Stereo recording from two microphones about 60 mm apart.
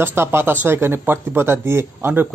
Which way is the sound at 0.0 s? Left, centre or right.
Right.